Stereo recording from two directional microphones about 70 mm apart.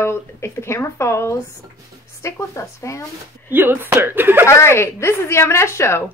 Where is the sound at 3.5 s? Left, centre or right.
Right.